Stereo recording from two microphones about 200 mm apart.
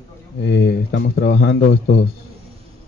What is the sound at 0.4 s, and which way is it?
A man's voice, 55° left (ahead or behind).